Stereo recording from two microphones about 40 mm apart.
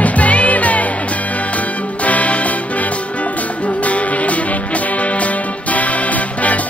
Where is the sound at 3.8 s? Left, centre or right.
Left.